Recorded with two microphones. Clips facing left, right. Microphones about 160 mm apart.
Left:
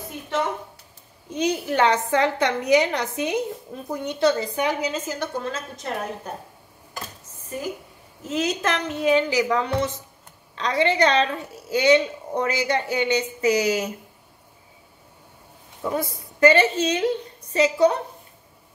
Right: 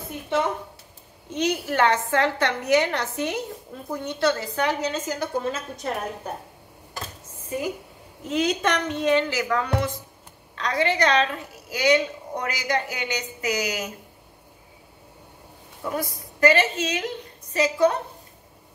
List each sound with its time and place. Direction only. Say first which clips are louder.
1.3 s a woman's voice: left 1 dB; 15° left (ahead or behind)
5.2 s a woman's voice: right 2 dB; 5° right (ahead or behind)
7.4 s a woman's voice: right 2 dB; 15° right (ahead or behind)
8.3 s a woman's voice: right 1 dB; centre (ahead or behind); by 13.9 s 30° left (ahead or behind)
15.9 s a woman's voice: left 2 dB; 25° left (ahead or behind)